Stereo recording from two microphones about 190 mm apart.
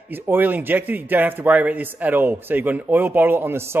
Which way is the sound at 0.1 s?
10° right (ahead or behind).